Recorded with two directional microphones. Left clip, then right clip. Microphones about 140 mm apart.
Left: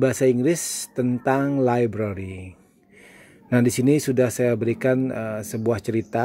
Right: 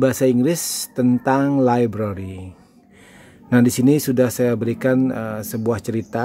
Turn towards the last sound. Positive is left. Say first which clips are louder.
# even
turn(degrees=10)  # may be behind; listen again after turning